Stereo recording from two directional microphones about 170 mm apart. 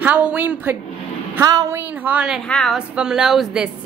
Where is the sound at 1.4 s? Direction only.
20° right (ahead or behind).